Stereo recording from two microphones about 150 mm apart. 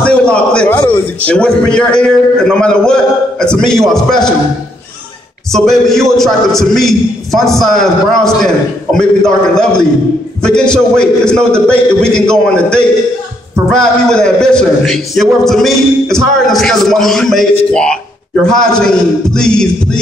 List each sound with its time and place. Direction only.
0.0 s a man's voice: 5° left (ahead or behind)
5.5 s a man's voice: 5° left (ahead or behind)